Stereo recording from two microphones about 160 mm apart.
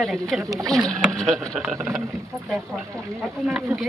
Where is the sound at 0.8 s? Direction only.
20° right (ahead or behind).